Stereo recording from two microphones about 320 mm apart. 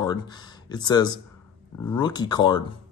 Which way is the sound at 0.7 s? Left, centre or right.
Centre.